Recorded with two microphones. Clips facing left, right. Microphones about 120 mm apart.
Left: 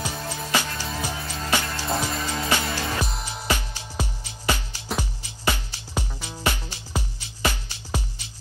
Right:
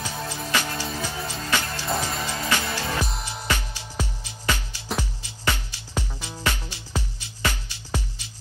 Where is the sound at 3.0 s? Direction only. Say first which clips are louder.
Even; centre (ahead or behind).